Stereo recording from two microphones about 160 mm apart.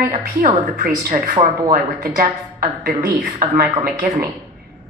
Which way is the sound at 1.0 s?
55° right (ahead or behind).